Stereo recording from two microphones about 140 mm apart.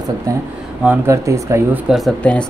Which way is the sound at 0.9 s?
20° right (ahead or behind).